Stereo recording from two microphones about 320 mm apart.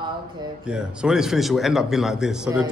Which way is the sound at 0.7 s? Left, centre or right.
Centre.